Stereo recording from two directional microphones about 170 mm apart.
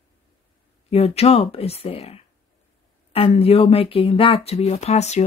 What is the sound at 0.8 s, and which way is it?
Speech, 35° left (ahead or behind).